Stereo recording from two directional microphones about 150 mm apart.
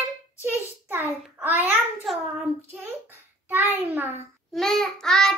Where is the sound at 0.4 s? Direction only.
15° right (ahead or behind).